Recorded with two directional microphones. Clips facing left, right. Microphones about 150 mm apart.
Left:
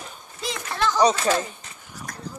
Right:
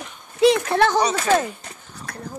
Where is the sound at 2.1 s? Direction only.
65° right (ahead or behind).